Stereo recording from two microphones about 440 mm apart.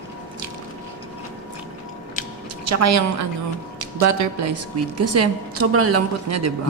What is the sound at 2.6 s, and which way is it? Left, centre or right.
Speech, right.